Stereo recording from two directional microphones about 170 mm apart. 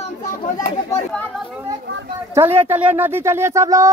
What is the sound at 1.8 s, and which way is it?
Speech, 90° right.